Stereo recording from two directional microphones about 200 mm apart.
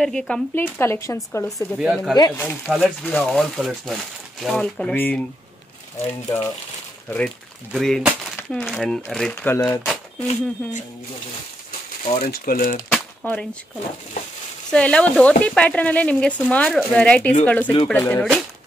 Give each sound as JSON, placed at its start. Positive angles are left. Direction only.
{"t": 0.0, "sound": "speech", "side_deg": 0}
{"t": 1.8, "sound": "speech", "side_deg": 0}
{"t": 2.1, "sound": "speech", "side_deg": 20}
{"t": 2.7, "sound": "speech", "side_deg": 0}
{"t": 6.2, "sound": "speech", "side_deg": 15}
{"t": 7.7, "sound": "speech", "side_deg": 0}
{"t": 12.2, "sound": "speech", "side_deg": 50}
{"t": 12.9, "sound": "a sound", "side_deg": 5}
{"t": 14.7, "sound": "speech", "side_deg": 5}